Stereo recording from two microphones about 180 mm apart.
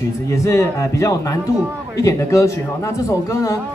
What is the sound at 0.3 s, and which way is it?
A man's voice, 15° left (ahead or behind).